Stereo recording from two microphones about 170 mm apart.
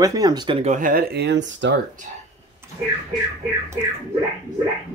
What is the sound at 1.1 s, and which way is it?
Speech, 85° right.